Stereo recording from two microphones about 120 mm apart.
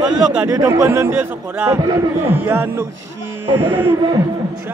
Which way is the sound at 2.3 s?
15° right (ahead or behind).